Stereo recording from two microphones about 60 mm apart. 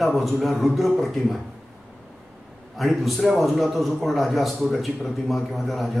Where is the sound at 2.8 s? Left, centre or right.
Centre.